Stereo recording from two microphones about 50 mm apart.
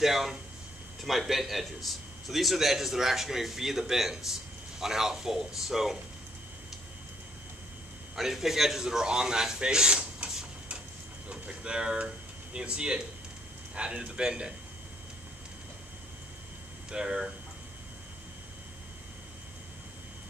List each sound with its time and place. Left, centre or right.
0.0 s a man's voice: centre
8.2 s a man's voice: centre
16.9 s speech: centre